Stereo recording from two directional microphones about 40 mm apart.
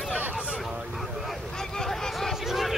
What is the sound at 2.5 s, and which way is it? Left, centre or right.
Crowd, centre.